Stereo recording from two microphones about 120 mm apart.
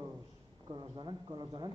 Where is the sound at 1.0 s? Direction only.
40° right (ahead or behind).